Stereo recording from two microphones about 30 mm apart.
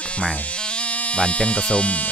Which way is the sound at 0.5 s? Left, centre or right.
Left.